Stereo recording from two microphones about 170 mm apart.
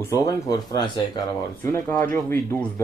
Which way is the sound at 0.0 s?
20° left (ahead or behind).